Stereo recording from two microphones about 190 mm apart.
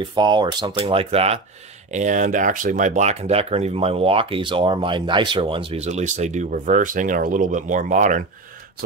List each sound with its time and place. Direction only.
0.1 s speech: 25° right (ahead or behind); by 8.2 s 40° right (ahead or behind)